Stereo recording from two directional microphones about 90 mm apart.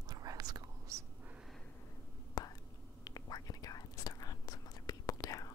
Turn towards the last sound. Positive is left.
turn(degrees=40)  # may be behind; listen again after turning